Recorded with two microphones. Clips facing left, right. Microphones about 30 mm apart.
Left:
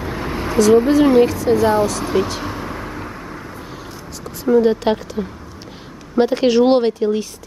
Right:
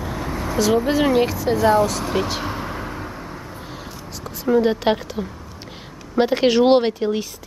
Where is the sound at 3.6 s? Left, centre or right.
Centre.